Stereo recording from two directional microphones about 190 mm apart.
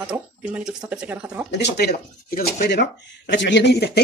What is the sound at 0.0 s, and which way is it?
A man's voice, 5° right (ahead or behind).